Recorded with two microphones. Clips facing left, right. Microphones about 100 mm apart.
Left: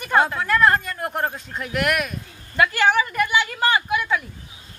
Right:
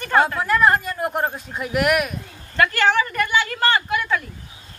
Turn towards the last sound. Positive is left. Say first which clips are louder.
# even
turn(degrees=10)  # may be behind; listen again after turning